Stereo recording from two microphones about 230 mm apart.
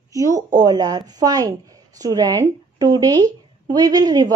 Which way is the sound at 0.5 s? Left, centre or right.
Centre.